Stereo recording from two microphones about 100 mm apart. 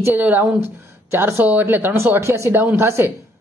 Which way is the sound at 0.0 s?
20° right (ahead or behind).